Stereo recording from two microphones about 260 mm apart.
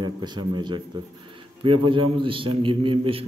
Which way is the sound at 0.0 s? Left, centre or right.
Centre.